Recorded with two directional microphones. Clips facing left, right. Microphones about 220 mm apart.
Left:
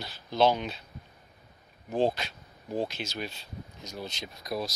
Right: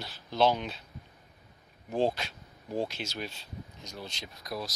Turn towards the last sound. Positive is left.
turn(degrees=20)  # may be behind; listen again after turning